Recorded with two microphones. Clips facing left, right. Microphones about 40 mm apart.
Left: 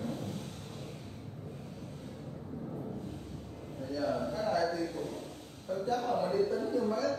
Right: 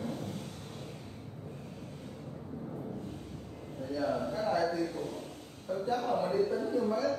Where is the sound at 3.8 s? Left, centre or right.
Centre.